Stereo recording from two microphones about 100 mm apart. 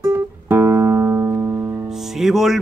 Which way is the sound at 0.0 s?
20° right (ahead or behind).